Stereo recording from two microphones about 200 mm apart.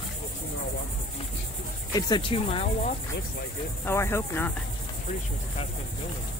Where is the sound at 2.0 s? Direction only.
20° left (ahead or behind).